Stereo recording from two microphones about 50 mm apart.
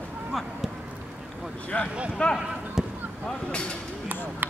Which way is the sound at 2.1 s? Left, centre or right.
Centre.